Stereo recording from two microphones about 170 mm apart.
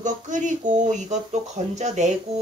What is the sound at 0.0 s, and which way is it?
Speech, 45° right (ahead or behind).